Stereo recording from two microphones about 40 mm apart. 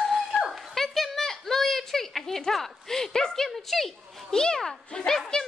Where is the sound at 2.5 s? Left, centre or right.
Centre.